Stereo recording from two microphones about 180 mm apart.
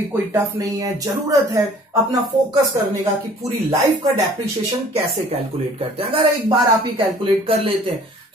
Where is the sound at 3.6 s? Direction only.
15° right (ahead or behind).